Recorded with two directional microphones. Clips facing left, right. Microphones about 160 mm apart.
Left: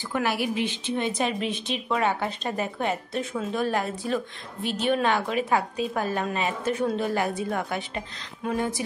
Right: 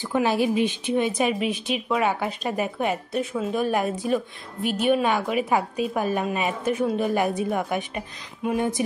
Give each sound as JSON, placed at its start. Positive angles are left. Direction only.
{"t": 0.1, "sound": "speech", "side_deg": -20}